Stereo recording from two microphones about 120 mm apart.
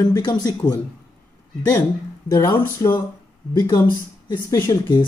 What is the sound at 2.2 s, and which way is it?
Speech, 30° left (ahead or behind).